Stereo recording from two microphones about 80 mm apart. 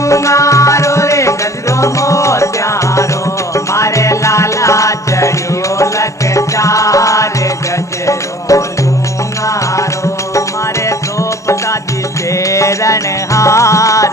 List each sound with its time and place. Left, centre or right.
0.0 s music: left
10.9 s music: left